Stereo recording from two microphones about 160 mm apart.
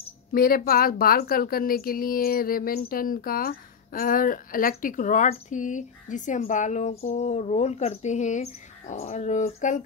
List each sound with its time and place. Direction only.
0.3 s a woman's voice: 65° left (ahead or behind)